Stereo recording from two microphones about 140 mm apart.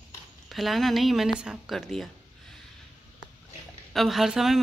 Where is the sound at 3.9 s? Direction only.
Centre (ahead or behind).